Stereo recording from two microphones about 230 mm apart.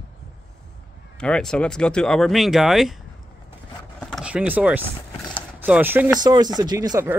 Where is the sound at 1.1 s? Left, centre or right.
Centre.